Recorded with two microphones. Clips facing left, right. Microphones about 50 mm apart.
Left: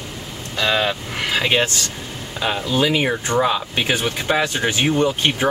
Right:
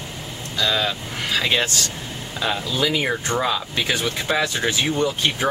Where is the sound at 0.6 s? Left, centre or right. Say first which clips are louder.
Left 3 dB; left.